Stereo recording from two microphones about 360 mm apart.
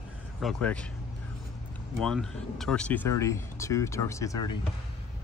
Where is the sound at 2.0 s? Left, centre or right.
Centre.